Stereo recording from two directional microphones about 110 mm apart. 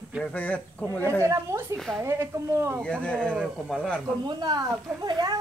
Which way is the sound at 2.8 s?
10° left (ahead or behind).